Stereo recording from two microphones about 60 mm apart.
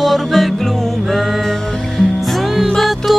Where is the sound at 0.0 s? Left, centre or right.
Centre.